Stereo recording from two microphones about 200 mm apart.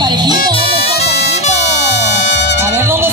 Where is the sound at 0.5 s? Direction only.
30° left (ahead or behind).